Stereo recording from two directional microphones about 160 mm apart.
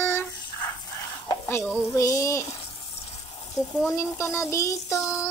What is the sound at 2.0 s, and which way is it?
Child singing, 20° left (ahead or behind).